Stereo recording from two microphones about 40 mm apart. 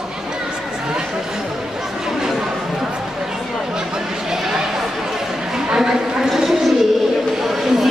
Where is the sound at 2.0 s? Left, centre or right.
Centre.